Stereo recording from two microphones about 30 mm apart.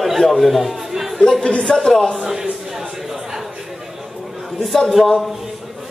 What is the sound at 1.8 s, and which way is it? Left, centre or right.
Speech, left.